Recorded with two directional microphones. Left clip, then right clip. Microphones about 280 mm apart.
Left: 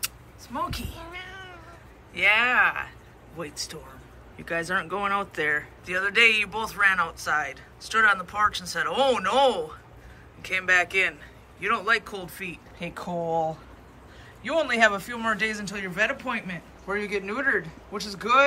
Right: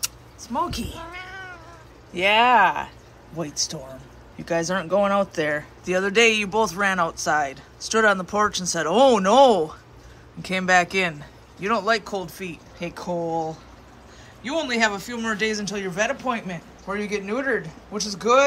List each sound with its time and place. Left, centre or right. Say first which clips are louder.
0.0 s cat: right 4 dB; centre
2.1 s speech: right 4 dB; centre
4.5 s speech: right 4 dB; centre